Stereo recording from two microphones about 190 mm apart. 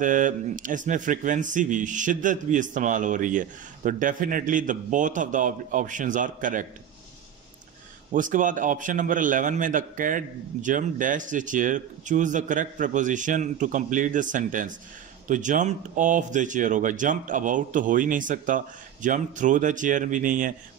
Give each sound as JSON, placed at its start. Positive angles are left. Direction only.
{"t": 0.0, "sound": "speech", "side_deg": -45}
{"t": 8.1, "sound": "speech", "side_deg": -45}